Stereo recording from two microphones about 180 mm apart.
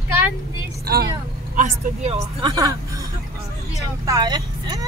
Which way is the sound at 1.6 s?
35° right (ahead or behind).